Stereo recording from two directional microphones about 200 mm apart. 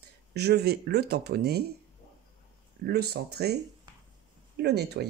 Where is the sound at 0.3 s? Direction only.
55° right (ahead or behind).